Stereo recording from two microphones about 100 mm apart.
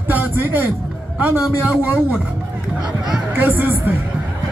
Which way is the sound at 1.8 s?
15° right (ahead or behind).